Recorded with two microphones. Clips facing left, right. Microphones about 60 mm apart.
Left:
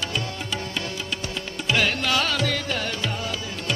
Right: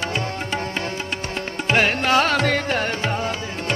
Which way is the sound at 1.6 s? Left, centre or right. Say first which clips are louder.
Right 4 dB; right.